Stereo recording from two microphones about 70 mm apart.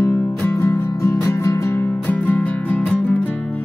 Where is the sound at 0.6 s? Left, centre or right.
Left.